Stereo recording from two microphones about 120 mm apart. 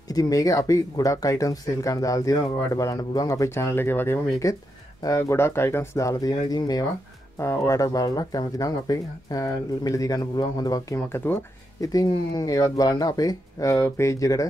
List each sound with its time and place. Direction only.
0.1 s speech: 30° left (ahead or behind)
11.1 s speech: 20° left (ahead or behind)
11.8 s speech: 30° left (ahead or behind)